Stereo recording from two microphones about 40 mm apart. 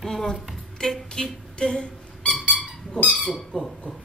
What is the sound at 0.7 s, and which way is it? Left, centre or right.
Squeak, centre.